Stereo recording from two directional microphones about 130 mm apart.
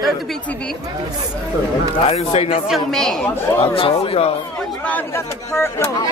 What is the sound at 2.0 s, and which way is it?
Speech, 50° left (ahead or behind).